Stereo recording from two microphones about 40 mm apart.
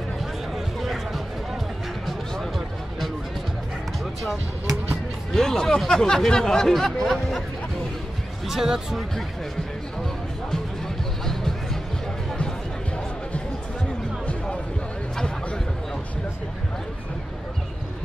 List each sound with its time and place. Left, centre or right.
0.7 s a sound: centre
4.0 s music: centre
5.3 s music: centre
5.9 s speech: centre
8.5 s speech: centre
11.2 s music: centre